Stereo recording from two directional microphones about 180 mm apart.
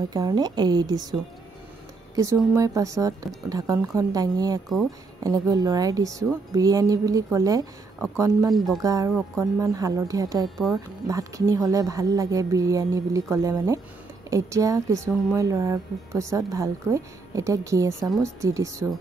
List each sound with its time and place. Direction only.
0.1 s a woman's voice: 20° right (ahead or behind)
2.1 s a woman's voice: 15° right (ahead or behind)